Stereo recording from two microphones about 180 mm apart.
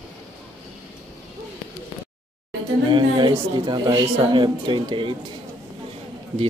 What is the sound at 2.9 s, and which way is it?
Speech, 25° right (ahead or behind).